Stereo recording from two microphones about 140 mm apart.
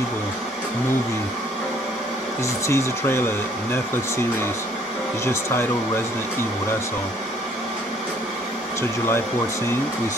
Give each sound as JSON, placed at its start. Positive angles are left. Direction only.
{"t": 2.6, "sound": "speech", "side_deg": 20}